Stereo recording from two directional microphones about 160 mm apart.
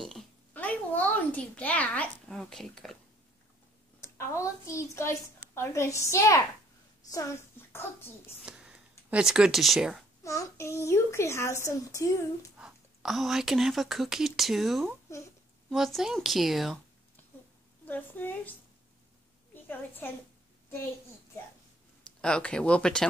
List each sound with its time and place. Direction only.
0.5 s a child's voice: 10° left (ahead or behind)
4.0 s a woman's voice: 20° left (ahead or behind)
8.5 s speech: 5° right (ahead or behind)
10.2 s a child's voice: 20° left (ahead or behind)
12.5 s speech: 5° right (ahead or behind)
15.1 s a woman's voice: 20° left (ahead or behind)
15.7 s a woman's voice: centre (ahead or behind)
17.8 s a child's voice: 10° left (ahead or behind)
22.2 s a woman's voice: 5° left (ahead or behind)